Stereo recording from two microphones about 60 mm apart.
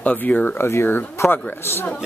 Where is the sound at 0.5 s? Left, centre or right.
Left.